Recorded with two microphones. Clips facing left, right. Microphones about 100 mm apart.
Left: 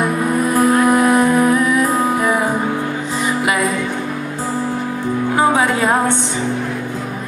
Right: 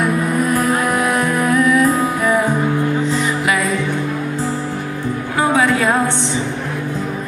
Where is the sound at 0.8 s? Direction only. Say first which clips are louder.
Left 4 dB; 20° left (ahead or behind).